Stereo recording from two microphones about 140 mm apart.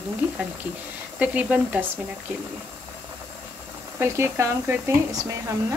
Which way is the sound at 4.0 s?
20° right (ahead or behind).